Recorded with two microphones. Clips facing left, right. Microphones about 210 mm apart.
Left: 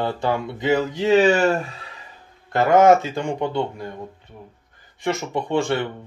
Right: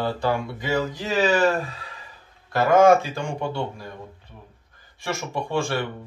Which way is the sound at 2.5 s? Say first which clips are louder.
Left 1 dB; 20° left (ahead or behind).